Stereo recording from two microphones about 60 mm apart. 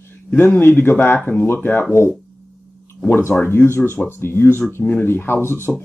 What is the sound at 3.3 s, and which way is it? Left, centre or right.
Speech, left.